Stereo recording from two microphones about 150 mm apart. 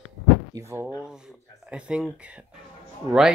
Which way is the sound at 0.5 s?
20° right (ahead or behind).